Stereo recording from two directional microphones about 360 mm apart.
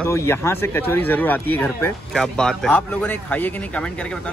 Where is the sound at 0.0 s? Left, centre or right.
Centre.